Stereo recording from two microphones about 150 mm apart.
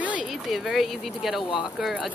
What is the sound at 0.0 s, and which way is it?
Speech, 10° right (ahead or behind).